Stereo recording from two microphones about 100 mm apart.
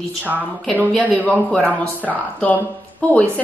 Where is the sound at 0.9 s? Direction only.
10° left (ahead or behind).